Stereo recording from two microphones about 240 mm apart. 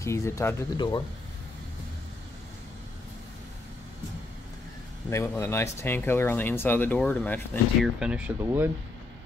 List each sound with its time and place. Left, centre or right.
0.0 s speech: centre
5.1 s speech: centre
8.0 s speech: centre